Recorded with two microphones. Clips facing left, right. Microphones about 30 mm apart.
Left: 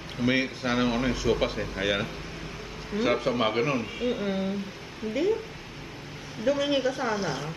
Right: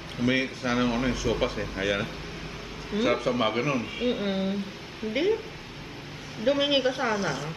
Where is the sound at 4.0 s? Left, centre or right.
Centre.